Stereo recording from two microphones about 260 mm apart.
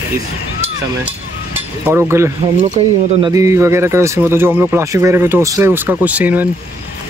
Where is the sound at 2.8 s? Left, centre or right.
Right.